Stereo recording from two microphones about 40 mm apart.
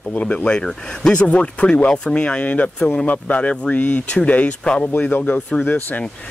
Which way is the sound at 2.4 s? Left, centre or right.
Left.